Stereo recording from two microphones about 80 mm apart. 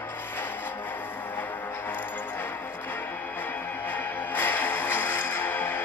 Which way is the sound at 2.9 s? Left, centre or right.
Left.